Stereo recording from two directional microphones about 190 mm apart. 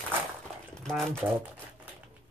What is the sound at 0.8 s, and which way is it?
Speech, centre (ahead or behind).